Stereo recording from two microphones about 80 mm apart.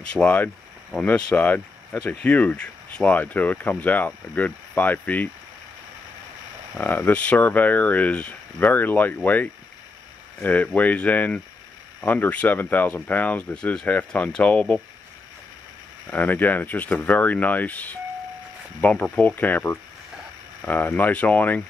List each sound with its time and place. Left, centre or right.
0.1 s speech: centre
6.8 s speech: left
16.1 s speech: left